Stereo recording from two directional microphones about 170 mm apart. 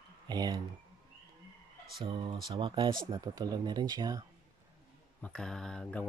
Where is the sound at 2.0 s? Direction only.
30° right (ahead or behind).